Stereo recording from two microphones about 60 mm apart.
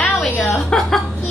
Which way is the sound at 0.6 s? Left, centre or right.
Centre.